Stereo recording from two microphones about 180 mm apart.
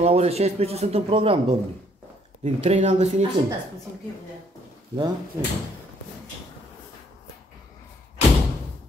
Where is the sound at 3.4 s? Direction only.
25° right (ahead or behind).